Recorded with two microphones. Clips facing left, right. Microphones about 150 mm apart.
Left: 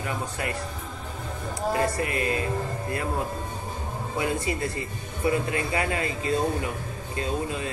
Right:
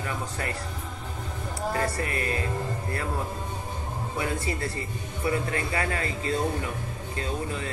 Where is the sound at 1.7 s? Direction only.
20° left (ahead or behind).